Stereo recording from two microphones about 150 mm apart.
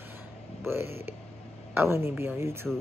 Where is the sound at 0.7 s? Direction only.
15° right (ahead or behind).